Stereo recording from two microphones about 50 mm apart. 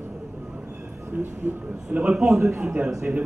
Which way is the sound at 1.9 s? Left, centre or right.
Right.